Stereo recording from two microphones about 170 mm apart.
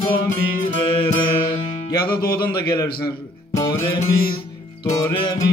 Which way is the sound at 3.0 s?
25° left (ahead or behind).